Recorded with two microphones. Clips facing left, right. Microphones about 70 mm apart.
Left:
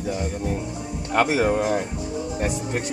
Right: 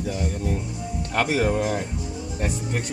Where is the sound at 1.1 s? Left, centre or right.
Centre.